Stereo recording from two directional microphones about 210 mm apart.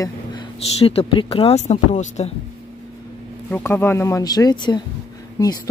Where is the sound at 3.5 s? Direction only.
10° left (ahead or behind).